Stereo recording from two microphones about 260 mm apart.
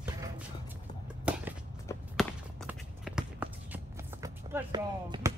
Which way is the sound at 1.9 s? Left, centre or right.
Centre.